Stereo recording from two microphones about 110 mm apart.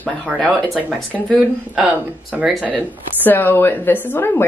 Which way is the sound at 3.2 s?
20° left (ahead or behind).